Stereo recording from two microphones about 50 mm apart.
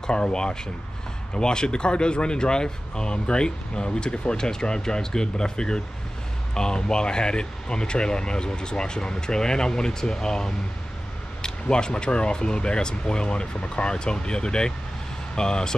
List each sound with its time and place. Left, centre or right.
0.0 s speech: centre